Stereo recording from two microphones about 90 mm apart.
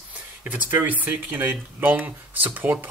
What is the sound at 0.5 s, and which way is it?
Speech, 15° right (ahead or behind).